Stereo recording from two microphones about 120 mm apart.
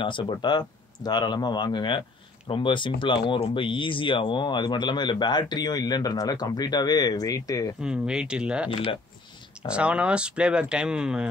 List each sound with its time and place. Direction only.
0.0 s speech: 40° left (ahead or behind)
7.8 s speech: 5° right (ahead or behind)
9.7 s speech: 10° right (ahead or behind)